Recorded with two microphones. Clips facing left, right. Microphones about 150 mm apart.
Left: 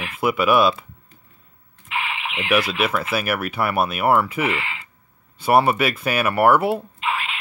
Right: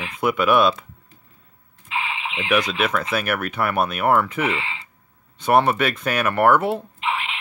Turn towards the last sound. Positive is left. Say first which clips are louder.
# even
turn(degrees=-20)  # may be behind; listen again after turning